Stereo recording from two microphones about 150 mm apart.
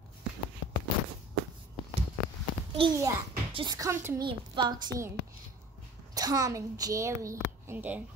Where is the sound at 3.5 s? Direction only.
25° right (ahead or behind).